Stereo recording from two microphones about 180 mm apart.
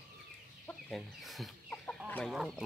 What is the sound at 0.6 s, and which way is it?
Chicken, centre (ahead or behind).